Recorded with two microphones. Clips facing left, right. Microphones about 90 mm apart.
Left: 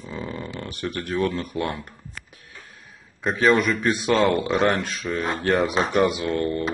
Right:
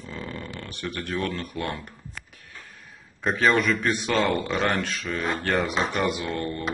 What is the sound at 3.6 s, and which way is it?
Speech, 15° left (ahead or behind).